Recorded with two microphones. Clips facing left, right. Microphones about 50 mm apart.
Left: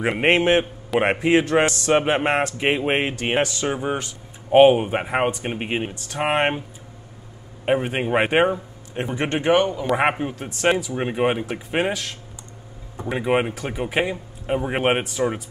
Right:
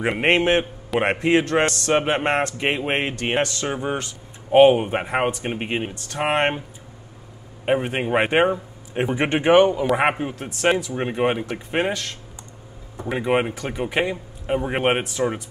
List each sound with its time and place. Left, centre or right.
0.0 s a man's voice: centre
7.6 s a man's voice: centre
8.9 s speech: centre
9.8 s a man's voice: centre